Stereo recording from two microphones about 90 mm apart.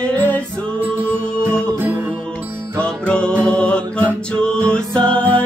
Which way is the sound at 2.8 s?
10° left (ahead or behind).